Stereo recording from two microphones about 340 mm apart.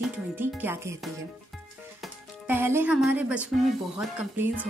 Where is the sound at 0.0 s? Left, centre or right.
Centre.